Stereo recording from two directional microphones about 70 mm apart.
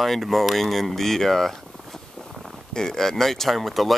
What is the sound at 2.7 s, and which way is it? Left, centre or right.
Speech, centre.